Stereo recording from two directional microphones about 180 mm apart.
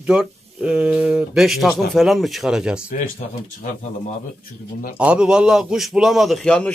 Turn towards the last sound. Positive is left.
turn(degrees=5)  # may be behind; listen again after turning